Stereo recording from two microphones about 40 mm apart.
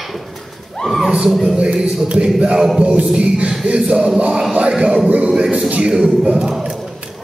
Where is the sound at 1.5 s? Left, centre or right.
Right.